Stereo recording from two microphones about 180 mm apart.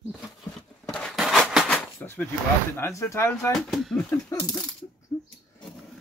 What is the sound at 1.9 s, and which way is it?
Speech, 10° left (ahead or behind).